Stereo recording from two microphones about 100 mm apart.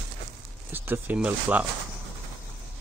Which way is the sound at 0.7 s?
20° right (ahead or behind).